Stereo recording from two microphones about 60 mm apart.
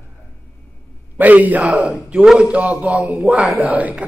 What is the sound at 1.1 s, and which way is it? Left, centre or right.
A man's voice, right.